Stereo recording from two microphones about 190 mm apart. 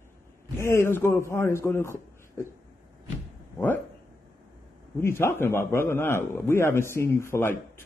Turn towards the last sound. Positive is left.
turn(degrees=15)  # may be behind; listen again after turning